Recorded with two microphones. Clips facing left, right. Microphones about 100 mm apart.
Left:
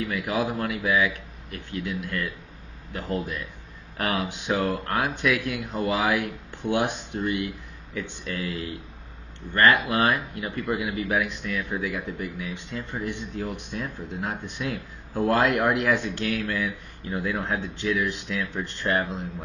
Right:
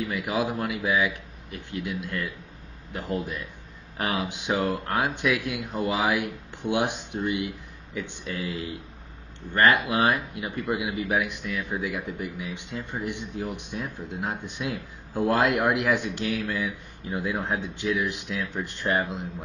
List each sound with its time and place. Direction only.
0.0 s a man's voice: 15° right (ahead or behind)